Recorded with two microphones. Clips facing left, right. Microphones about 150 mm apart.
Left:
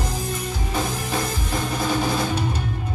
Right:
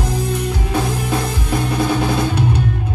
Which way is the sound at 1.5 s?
65° right (ahead or behind).